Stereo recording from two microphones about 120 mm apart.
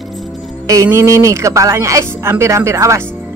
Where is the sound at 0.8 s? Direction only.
25° right (ahead or behind).